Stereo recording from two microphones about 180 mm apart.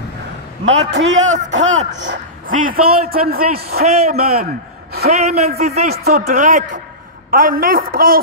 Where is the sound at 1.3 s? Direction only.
40° right (ahead or behind); by 3.8 s 60° right (ahead or behind).